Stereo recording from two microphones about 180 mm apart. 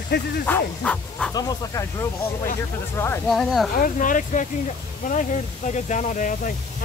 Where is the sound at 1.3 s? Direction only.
20° left (ahead or behind).